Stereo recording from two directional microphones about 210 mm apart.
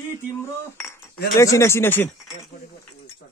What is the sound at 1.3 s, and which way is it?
Speech, 15° left (ahead or behind).